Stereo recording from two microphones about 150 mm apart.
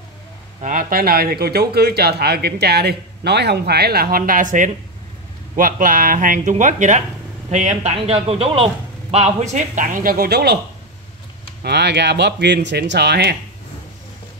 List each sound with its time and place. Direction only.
0.6 s a man's voice: 60° right (ahead or behind); by 10.6 s 90° right
11.6 s speech: 90° right